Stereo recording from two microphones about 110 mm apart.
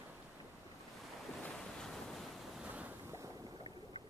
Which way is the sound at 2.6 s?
15° right (ahead or behind).